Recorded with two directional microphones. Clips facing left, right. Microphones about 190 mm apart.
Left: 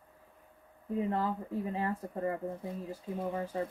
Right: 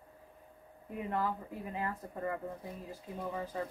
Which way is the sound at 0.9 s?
30° left (ahead or behind).